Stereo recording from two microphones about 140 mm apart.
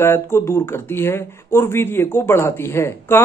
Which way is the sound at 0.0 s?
15° left (ahead or behind).